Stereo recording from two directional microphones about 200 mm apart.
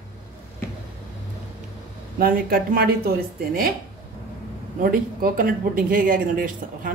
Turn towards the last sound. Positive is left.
turn(degrees=-45)  # may be behind; listen again after turning